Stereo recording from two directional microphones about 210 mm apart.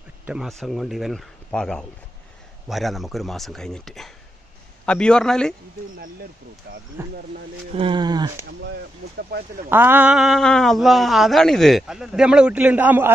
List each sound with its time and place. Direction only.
0.3 s speech: centre (ahead or behind)
6.7 s speech: 55° right (ahead or behind)
7.7 s speech: 25° right (ahead or behind)
9.7 s speech: 10° right (ahead or behind)